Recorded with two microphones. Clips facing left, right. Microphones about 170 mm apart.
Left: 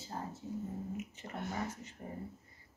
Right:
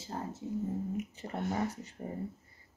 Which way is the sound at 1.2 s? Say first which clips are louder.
Right 7 dB; 35° right (ahead or behind).